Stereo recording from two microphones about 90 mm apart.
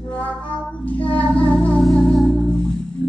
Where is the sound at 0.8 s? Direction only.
20° left (ahead or behind).